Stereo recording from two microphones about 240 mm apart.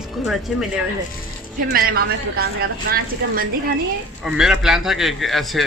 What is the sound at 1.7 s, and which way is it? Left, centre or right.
Speech, right.